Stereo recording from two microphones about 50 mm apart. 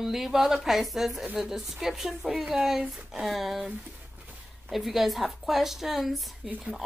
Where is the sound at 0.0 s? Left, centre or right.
Centre.